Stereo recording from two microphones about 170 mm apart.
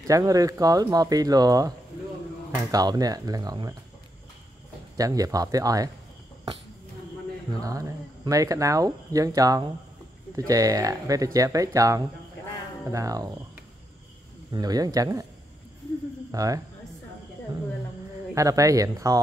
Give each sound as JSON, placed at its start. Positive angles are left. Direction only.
{"t": 0.0, "sound": "speech", "side_deg": -20}
{"t": 2.7, "sound": "speech", "side_deg": -20}
{"t": 4.9, "sound": "speech", "side_deg": -20}
{"t": 7.6, "sound": "speech", "side_deg": -20}
{"t": 14.5, "sound": "speech", "side_deg": -25}
{"t": 16.3, "sound": "speech", "side_deg": -20}
{"t": 18.3, "sound": "speech", "side_deg": -20}